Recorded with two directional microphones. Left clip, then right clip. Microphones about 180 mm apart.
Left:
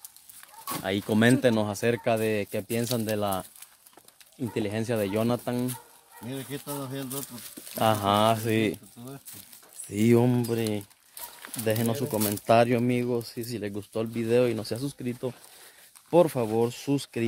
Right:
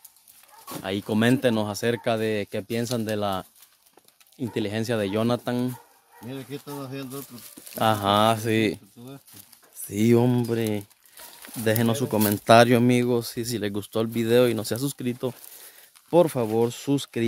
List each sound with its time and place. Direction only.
0.8 s speech: 5° right (ahead or behind); by 5.7 s 25° right (ahead or behind)
7.7 s speech: 20° right (ahead or behind)
9.8 s speech: 20° right (ahead or behind)
11.6 s speech: 35° right (ahead or behind)
16.1 s speech: 20° right (ahead or behind)